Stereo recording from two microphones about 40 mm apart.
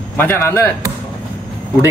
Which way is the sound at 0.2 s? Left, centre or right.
Left.